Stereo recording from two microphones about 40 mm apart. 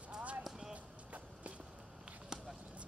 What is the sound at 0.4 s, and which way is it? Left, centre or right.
Basketball bounce, centre.